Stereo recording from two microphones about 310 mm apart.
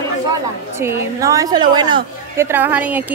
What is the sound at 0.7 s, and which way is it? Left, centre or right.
A woman's voice, centre.